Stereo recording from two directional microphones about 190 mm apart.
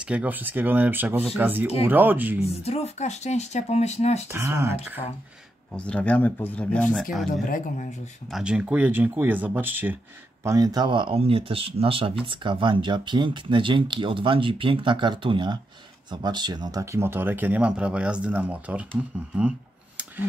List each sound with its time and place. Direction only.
0.0 s speech: 5° right (ahead or behind)
2.6 s speech: 35° left (ahead or behind)
4.3 s speech: 15° right (ahead or behind)
5.7 s speech: 5° left (ahead or behind)
7.4 s speech: 45° left (ahead or behind)
8.3 s speech: 5° right (ahead or behind)